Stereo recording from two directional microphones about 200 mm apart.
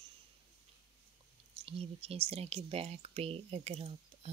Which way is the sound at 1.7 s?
30° right (ahead or behind).